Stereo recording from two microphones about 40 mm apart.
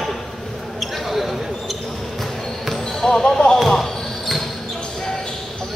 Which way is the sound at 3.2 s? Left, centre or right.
Left.